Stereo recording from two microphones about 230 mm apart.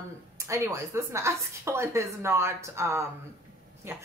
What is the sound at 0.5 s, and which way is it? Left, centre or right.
Speech, centre.